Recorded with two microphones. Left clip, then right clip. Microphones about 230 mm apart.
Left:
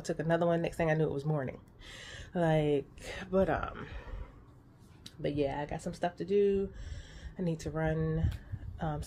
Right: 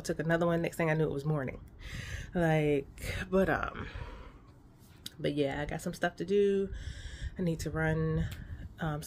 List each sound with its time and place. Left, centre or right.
0.0 s speech: centre